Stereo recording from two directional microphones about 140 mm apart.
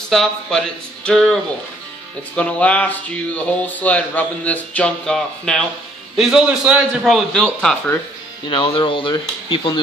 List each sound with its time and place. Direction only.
0.1 s a man's voice: centre (ahead or behind)
6.1 s a man's voice: 5° right (ahead or behind)
8.5 s speech: 40° left (ahead or behind)